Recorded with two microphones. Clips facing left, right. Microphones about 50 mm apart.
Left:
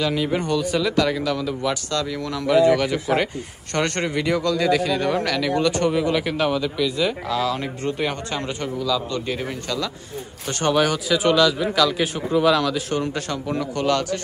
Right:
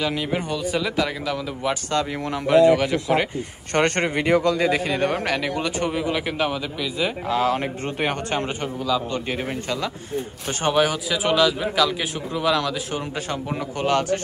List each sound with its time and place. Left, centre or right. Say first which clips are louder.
0.0 s speech: left 2 dB; centre
1.6 s speech: right 1 dB; right
2.6 s speech: right 1 dB; centre
3.7 s speech: right 2 dB; right; by 7.2 s centre
7.2 s a man's voice: right 2 dB; right; by 13.2 s centre
13.3 s speech: left 2 dB; centre